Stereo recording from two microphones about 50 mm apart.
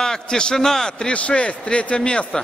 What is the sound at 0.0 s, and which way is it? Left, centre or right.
A man's voice, centre.